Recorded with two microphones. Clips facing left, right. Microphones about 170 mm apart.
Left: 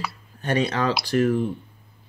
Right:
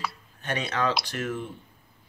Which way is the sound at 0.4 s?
35° left (ahead or behind).